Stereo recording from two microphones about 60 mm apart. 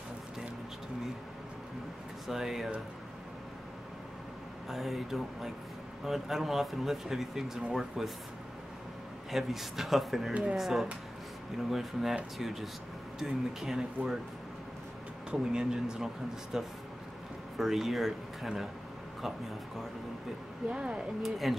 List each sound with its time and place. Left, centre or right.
2.2 s speech: centre
4.6 s speech: centre
9.3 s speech: centre
15.3 s speech: centre
20.7 s speech: centre
21.2 s speech: centre